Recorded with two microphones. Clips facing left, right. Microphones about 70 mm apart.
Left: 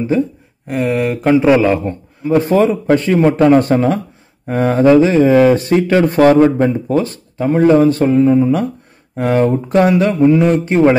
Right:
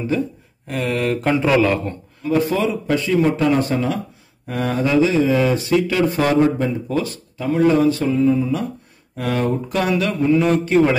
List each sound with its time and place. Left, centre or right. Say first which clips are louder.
0.7 s a man's voice: left 5 dB; centre
2.3 s speech: left 7 dB; left
3.7 s speech: left 7 dB; left
6.6 s speech: left 7 dB; left
9.1 s speech: left 7 dB; left